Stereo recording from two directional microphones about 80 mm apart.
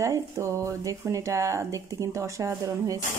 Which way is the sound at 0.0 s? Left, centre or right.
Right.